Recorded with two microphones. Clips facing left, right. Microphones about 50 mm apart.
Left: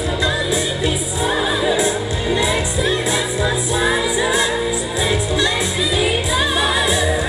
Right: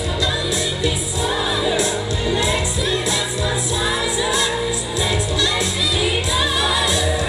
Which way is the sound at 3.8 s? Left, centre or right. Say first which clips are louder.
Left 4 dB; left.